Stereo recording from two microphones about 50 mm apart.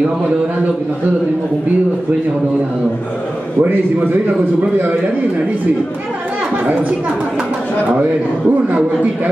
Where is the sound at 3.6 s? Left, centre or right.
Right.